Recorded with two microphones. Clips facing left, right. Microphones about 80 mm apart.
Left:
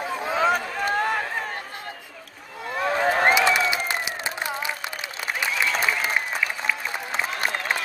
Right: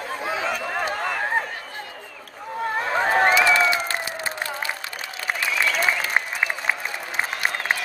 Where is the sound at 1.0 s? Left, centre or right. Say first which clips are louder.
Right 2 dB; right.